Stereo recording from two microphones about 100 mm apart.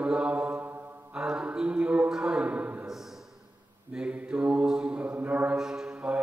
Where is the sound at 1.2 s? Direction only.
10° right (ahead or behind).